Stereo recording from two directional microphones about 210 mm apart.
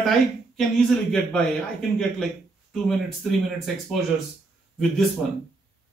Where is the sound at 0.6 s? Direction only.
5° left (ahead or behind).